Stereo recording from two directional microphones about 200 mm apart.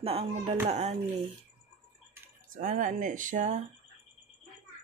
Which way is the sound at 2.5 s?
40° right (ahead or behind).